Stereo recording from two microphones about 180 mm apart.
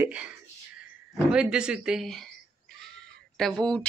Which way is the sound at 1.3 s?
5° right (ahead or behind).